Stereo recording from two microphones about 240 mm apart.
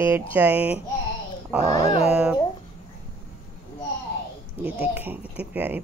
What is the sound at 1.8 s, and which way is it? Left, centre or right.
Speech, left.